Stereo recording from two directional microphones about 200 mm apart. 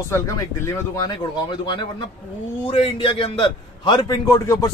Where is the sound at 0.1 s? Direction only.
15° left (ahead or behind).